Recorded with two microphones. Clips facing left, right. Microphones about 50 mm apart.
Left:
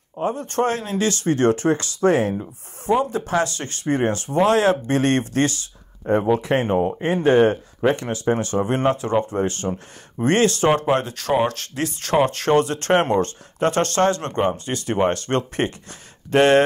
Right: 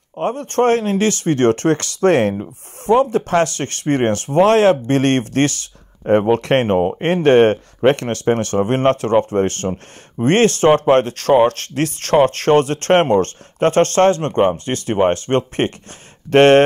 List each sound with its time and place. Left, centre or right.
0.2 s speech: right
2.9 s speech: right